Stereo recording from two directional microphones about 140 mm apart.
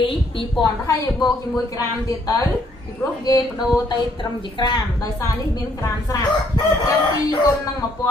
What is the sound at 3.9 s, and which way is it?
A woman's voice, 35° left (ahead or behind).